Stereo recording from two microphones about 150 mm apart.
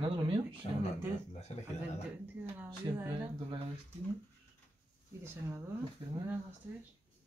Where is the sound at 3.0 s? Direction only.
25° right (ahead or behind).